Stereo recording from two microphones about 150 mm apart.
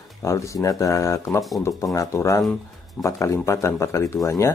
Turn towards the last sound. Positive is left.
turn(degrees=20)  # may be behind; listen again after turning